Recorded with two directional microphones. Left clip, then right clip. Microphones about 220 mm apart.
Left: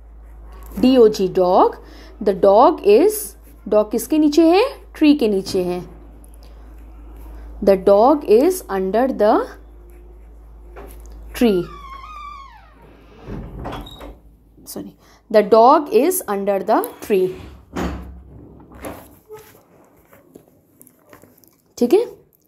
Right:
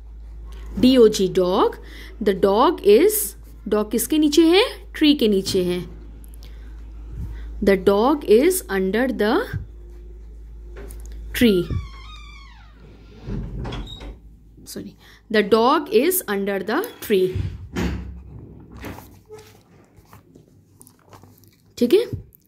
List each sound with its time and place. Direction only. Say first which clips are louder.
0.5 s speech: left 1 dB; 20° right (ahead or behind)
3.2 s a sound: right 2 dB; 25° right (ahead or behind)
4.1 s a woman's voice: left 1 dB; 25° right (ahead or behind)
7.6 s a woman's voice: left 5 dB; 25° right (ahead or behind)
14.6 s a woman's voice: left 3 dB; 5° right (ahead or behind)
21.7 s speech: left 2 dB; 15° right (ahead or behind)